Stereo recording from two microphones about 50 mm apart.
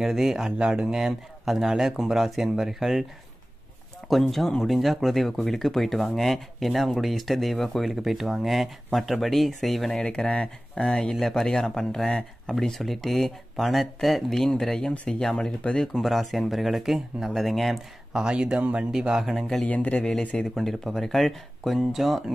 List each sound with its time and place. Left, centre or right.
0.0 s speech: centre
0.6 s speech: centre
4.1 s speech: centre
10.0 s speech: left
11.1 s speech: centre
16.0 s speech: centre
18.1 s speech: centre
18.9 s speech: centre
19.6 s speech: left
20.5 s speech: centre